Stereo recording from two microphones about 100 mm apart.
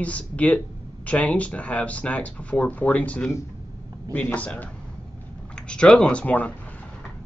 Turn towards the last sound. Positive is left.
turn(degrees=15)  # may be behind; listen again after turning